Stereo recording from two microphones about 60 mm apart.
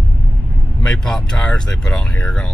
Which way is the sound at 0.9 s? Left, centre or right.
Centre.